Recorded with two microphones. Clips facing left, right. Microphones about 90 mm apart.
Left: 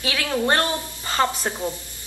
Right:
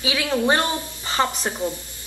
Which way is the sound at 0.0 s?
15° right (ahead or behind).